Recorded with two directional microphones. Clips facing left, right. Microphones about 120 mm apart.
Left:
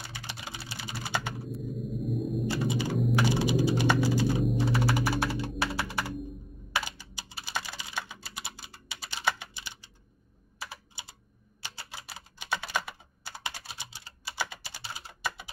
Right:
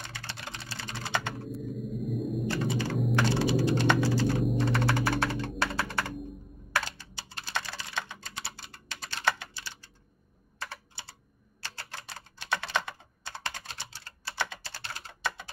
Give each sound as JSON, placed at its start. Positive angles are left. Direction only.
{"t": 0.0, "sound": "typing", "side_deg": 15}
{"t": 3.0, "sound": "computer keyboard", "side_deg": 0}
{"t": 3.3, "sound": "typing", "side_deg": 15}
{"t": 4.4, "sound": "computer keyboard", "side_deg": 5}
{"t": 11.6, "sound": "typing", "side_deg": 10}